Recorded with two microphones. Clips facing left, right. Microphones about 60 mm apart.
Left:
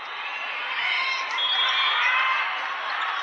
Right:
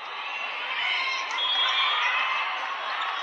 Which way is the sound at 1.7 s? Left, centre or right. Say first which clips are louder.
Left 4 dB; left.